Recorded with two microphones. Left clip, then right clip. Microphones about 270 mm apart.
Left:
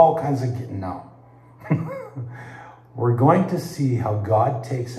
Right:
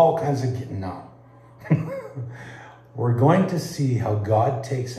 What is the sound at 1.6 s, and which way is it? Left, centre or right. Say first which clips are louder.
Cough: even; centre.